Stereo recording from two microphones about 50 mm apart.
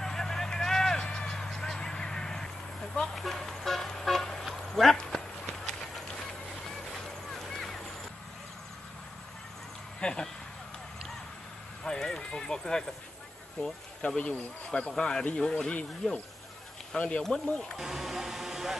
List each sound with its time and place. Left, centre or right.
0.0 s vehicle: centre
4.9 s horse: centre
5.5 s horse: centre
7.3 s boat: centre
9.9 s a sound: centre
11.8 s clip-clop: centre
14.0 s speech: left
17.7 s speech: centre